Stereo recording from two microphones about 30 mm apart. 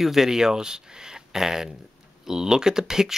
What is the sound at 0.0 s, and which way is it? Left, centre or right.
Speech, centre.